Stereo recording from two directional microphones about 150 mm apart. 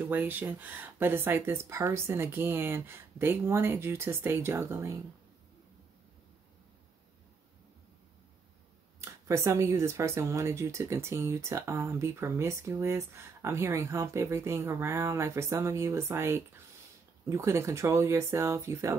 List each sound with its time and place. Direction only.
0.0 s speech: 15° right (ahead or behind)
9.3 s speech: 20° right (ahead or behind)